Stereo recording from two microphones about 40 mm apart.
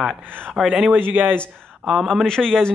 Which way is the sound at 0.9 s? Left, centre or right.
Right.